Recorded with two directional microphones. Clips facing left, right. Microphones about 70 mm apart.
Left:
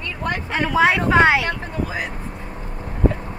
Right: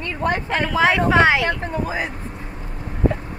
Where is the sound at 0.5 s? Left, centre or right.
Centre.